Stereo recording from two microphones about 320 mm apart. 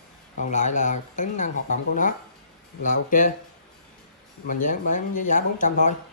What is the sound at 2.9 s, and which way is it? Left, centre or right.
Speech, left.